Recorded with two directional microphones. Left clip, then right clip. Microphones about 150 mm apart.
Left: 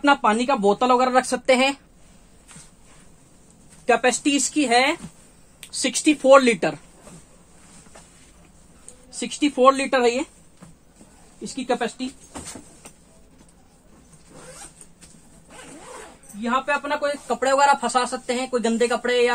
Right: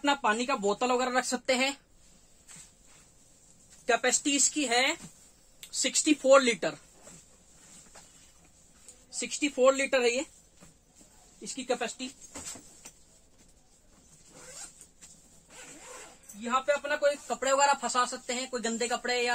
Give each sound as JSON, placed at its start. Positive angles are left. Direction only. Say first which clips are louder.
{"t": 0.0, "sound": "speech", "louder": "left 9 dB", "side_deg": 25}
{"t": 3.8, "sound": "speech", "louder": "left 8 dB", "side_deg": 10}
{"t": 9.3, "sound": "speech", "louder": "left 8 dB", "side_deg": 30}
{"t": 11.4, "sound": "speech", "louder": "left 8 dB", "side_deg": 25}
{"t": 15.5, "sound": "zipper", "louder": "left 7 dB", "side_deg": 0}
{"t": 16.4, "sound": "speech", "louder": "left 6 dB", "side_deg": 15}